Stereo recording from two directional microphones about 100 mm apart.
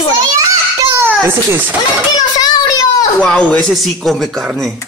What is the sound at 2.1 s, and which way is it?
Children playing, 40° left (ahead or behind).